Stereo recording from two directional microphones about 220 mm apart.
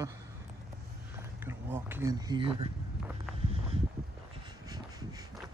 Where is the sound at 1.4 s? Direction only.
10° right (ahead or behind).